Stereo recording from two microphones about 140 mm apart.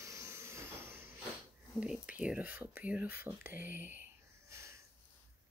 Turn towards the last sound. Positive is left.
turn(degrees=-20)  # may be behind; listen again after turning